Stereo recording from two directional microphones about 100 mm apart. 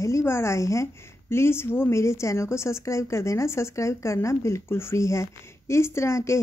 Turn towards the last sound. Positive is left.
turn(degrees=30)  # may be behind; listen again after turning